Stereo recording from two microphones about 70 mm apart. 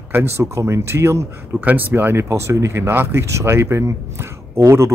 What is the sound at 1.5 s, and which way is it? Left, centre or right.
Speech, right.